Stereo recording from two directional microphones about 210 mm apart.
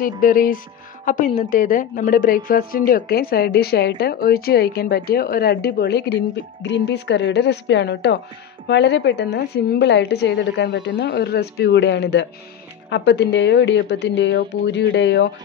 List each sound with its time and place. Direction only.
0.2 s a woman's voice: 40° left (ahead or behind)